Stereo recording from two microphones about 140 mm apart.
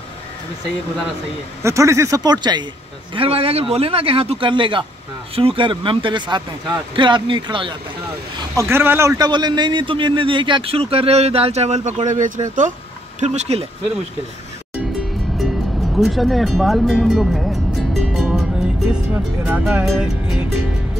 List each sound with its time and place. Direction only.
1.6 s speech: 20° right (ahead or behind)
3.2 s a man's voice: 40° right (ahead or behind)
8.4 s a man's voice: 20° right (ahead or behind); by 12.7 s 65° right (ahead or behind)
13.2 s a man's voice: 50° right (ahead or behind)
15.3 s music: centre (ahead or behind)
19.1 s speech: 15° right (ahead or behind)
19.6 s speech: 5° right (ahead or behind)